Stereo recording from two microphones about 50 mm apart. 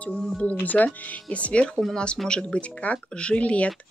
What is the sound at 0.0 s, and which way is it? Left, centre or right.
Speech, left.